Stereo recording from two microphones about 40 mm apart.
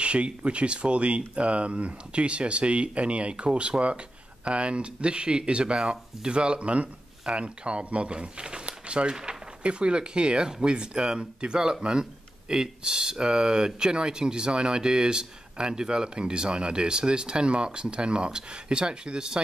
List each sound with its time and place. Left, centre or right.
0.0 s speech: right
9.1 s speech: centre
9.6 s speech: right